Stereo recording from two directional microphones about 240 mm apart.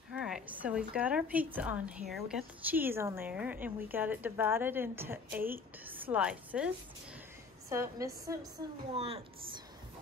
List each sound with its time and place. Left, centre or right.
0.1 s a woman's voice: centre
7.7 s a woman's voice: centre
8.9 s a woman's voice: right